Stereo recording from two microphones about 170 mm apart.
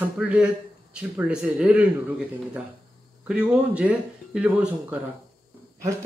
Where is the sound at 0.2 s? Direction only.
5° right (ahead or behind).